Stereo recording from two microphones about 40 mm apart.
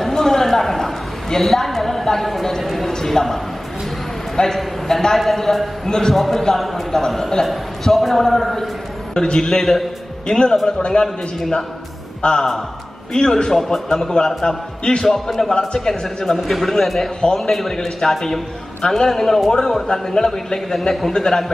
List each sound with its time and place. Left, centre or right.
0.0 s a sound: centre
2.6 s a man's voice: centre
2.9 s a man's voice: centre
4.6 s a man's voice: centre
5.9 s a man's voice: centre
6.1 s a man's voice: centre
9.1 s speech: centre
9.5 s a man's voice: centre; by 11.1 s left
12.2 s a man's voice: left; by 15.4 s centre
15.4 s speech: centre
16.3 s a man's voice: centre